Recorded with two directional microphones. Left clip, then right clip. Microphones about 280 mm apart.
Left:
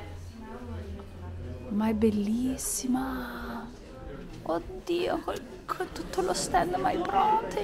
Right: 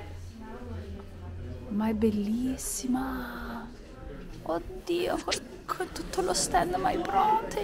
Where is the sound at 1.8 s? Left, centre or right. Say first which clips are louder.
Left 1 dB; centre.